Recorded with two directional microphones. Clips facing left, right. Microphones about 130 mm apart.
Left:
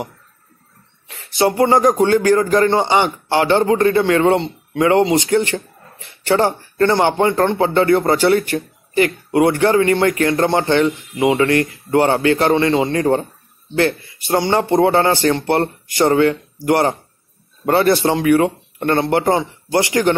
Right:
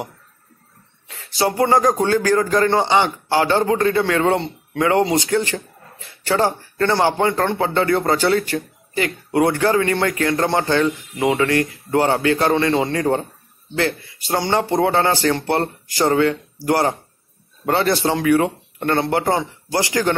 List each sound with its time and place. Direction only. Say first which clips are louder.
1.0 s a man's voice: left 4 dB; 25° left (ahead or behind)